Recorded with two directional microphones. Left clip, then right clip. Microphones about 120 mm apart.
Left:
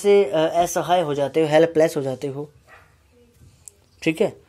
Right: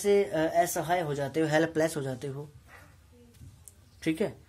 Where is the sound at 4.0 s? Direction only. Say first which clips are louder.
Left 9 dB; 30° left (ahead or behind).